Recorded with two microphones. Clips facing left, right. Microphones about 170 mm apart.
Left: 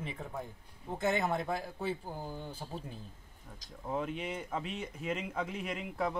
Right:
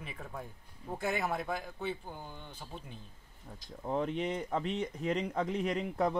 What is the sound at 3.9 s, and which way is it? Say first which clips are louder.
Speech: right 3 dB; 5° left (ahead or behind).